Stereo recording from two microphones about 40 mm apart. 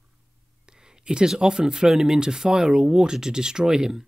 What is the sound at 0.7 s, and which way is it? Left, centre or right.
Speech, centre.